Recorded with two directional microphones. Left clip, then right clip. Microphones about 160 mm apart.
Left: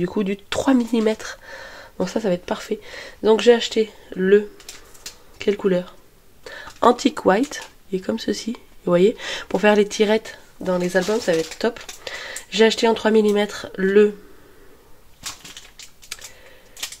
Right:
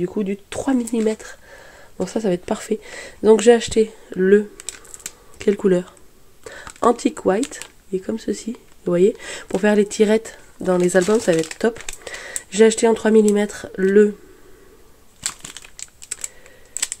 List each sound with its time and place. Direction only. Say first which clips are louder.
0.0 s speech: even; 5° right (ahead or behind); by 2.4 s 25° right (ahead or behind)
2.4 s speech: right 2 dB; 40° right (ahead or behind)
6.5 s a sound: even; 35° right (ahead or behind)
6.8 s speech: left 1 dB; 15° right (ahead or behind)